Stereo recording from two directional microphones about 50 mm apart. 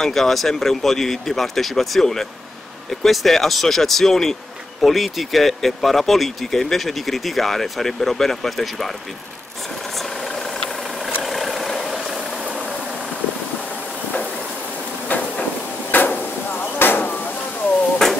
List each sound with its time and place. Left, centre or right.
0.0 s speech: centre
11.2 s vehicle: centre
15.0 s a sound: left